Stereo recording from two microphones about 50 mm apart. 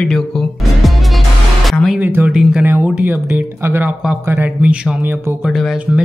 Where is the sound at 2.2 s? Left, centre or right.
Right.